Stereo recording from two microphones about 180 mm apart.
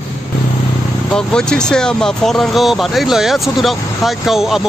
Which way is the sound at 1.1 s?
5° left (ahead or behind).